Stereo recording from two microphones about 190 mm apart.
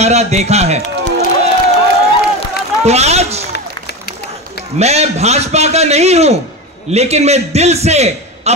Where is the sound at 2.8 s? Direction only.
35° right (ahead or behind).